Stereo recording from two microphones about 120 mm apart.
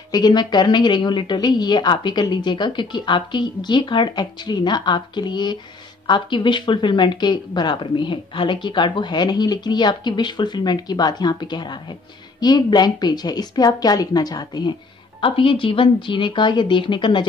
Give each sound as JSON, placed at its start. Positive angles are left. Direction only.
{"t": 0.1, "sound": "speech", "side_deg": 35}